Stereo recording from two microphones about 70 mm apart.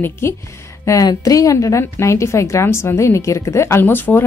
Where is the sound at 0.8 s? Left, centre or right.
Left.